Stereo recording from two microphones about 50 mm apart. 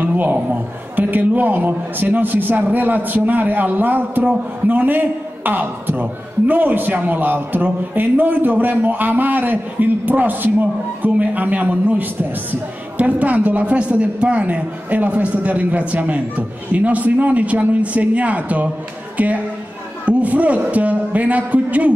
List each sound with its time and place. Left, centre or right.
0.0 s a man's voice: right